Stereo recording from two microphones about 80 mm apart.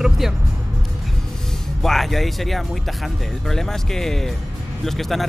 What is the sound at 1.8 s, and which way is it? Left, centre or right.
A man's voice, centre.